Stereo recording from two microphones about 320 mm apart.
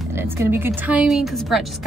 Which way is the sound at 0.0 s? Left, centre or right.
Centre.